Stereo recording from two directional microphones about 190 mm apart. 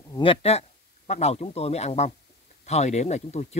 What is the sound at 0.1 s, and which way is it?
Speech, 30° left (ahead or behind).